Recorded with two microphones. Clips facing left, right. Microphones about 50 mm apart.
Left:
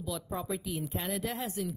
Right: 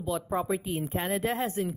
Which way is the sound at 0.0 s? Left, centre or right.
Right.